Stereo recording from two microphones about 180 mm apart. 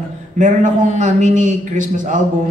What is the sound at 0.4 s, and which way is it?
A man's voice, 45° right (ahead or behind).